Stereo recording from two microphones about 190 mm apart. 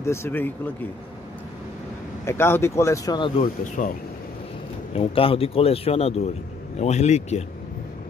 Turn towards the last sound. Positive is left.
turn(degrees=35)  # may be behind; listen again after turning